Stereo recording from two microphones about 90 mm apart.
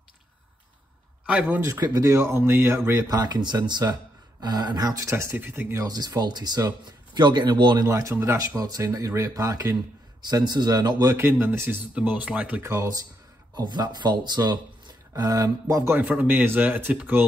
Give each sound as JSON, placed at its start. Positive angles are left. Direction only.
{"t": 1.2, "sound": "speech", "side_deg": -15}
{"t": 1.6, "sound": "speech", "side_deg": -35}
{"t": 3.1, "sound": "speech", "side_deg": -50}
{"t": 5.1, "sound": "speech", "side_deg": -25}
{"t": 5.8, "sound": "speech", "side_deg": -45}
{"t": 7.8, "sound": "speech", "side_deg": -40}
{"t": 11.1, "sound": "speech", "side_deg": -30}
{"t": 12.6, "sound": "speech", "side_deg": -40}
{"t": 13.6, "sound": "speech", "side_deg": -50}
{"t": 15.7, "sound": "speech", "side_deg": -30}
{"t": 16.0, "sound": "speech", "side_deg": -15}